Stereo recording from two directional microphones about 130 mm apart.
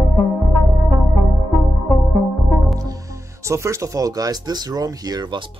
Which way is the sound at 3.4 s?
20° right (ahead or behind).